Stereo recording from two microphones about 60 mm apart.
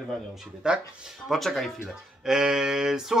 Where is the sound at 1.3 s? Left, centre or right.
Centre.